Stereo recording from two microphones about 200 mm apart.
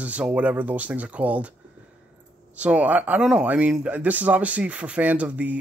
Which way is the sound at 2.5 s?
5° right (ahead or behind).